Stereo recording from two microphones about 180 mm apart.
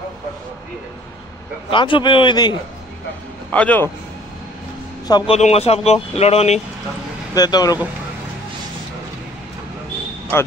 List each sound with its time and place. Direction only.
1.7 s a man's voice: 25° left (ahead or behind)
3.5 s a man's voice: 10° left (ahead or behind)
5.0 s speech: 25° left (ahead or behind)
7.3 s a man's voice: 20° left (ahead or behind)